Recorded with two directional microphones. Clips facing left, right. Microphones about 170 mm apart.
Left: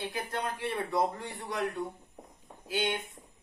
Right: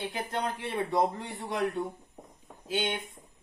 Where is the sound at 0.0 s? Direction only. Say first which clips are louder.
Right 2 dB; 20° right (ahead or behind).